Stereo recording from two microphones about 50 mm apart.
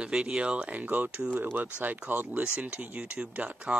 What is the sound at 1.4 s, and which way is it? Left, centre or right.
Speech, right.